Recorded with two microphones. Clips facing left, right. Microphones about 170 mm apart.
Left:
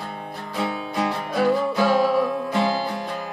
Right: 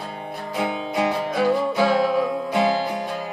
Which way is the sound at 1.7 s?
Centre (ahead or behind).